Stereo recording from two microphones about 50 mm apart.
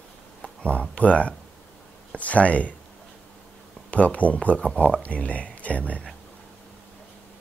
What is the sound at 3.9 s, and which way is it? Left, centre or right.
Speech, left.